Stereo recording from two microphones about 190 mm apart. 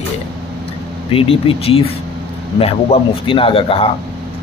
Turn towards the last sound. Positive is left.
turn(degrees=30)  # may be behind; listen again after turning